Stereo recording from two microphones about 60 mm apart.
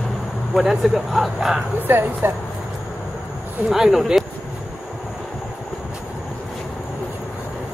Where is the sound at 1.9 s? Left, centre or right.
Right.